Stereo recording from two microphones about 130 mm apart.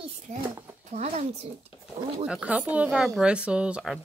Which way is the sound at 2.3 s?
5° right (ahead or behind).